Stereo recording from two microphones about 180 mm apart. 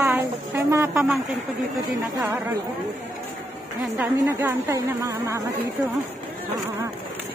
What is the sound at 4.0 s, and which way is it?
A woman's voice, 15° right (ahead or behind).